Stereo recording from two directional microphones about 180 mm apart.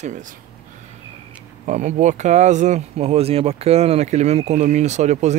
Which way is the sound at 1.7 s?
45° right (ahead or behind).